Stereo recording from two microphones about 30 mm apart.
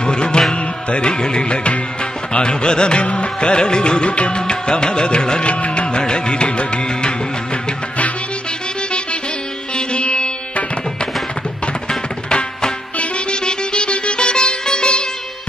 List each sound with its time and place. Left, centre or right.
0.0 s music: left
3.0 s music: left
5.4 s music: left
5.9 s music: left
9.8 s music: left
12.9 s music: left
13.4 s sitar: left